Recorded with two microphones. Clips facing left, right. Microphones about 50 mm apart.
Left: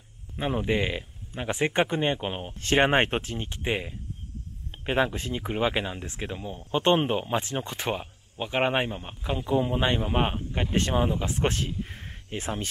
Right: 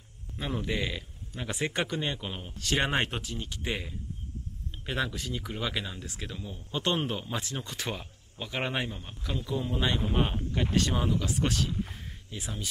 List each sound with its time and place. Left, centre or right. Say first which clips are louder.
0.4 s speech: left 6 dB; left